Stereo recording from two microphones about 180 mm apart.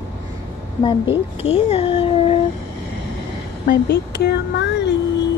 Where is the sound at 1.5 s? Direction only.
30° left (ahead or behind).